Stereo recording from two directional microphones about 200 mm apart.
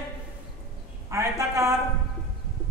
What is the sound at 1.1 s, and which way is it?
Speech, 15° right (ahead or behind).